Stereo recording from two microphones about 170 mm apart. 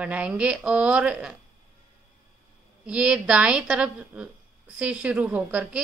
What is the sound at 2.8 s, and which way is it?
Speech, 5° right (ahead or behind).